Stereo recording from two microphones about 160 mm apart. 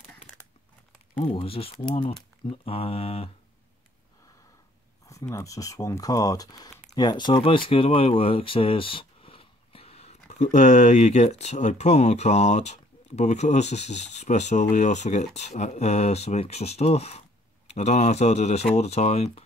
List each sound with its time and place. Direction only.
1.2 s speech: 35° left (ahead or behind)
5.3 s speech: 20° left (ahead or behind); by 19.4 s 40° left (ahead or behind)